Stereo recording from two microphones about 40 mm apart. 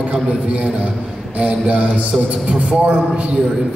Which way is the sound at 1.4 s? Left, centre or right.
Right.